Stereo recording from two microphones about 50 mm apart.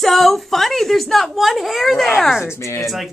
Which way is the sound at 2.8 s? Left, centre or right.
Centre.